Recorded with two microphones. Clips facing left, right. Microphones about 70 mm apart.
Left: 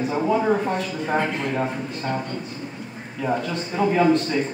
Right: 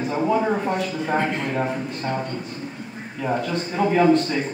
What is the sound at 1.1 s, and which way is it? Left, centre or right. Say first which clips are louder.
Speech: even; right.